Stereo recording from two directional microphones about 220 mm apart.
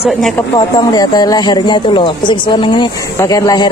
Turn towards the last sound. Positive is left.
turn(degrees=15)  # may be behind; listen again after turning